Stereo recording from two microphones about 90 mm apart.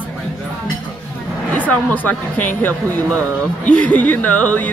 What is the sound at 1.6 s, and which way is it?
Speech, 15° left (ahead or behind).